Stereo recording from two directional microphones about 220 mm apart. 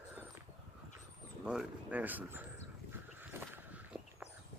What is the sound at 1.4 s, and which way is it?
Speech, 5° right (ahead or behind).